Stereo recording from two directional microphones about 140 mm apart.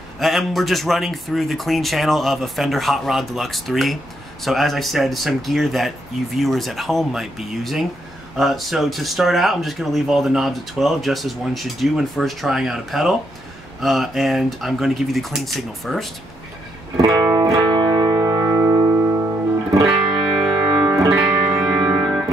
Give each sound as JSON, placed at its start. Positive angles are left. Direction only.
{"t": 0.2, "sound": "speech", "side_deg": 0}
{"t": 16.9, "sound": "music", "side_deg": -25}
{"t": 19.9, "sound": "music", "side_deg": -5}